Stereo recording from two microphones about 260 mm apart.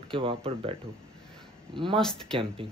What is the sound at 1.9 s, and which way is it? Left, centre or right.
Speech, centre.